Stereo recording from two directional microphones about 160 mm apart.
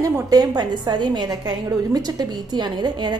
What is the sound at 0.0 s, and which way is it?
A woman's voice, 20° right (ahead or behind).